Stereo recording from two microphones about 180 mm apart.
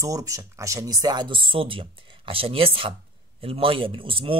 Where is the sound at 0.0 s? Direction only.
20° right (ahead or behind).